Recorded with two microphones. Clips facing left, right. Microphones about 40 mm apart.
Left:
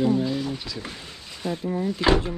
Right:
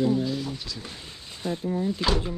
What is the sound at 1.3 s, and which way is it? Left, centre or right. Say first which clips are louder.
Speech: left 1 dB; left.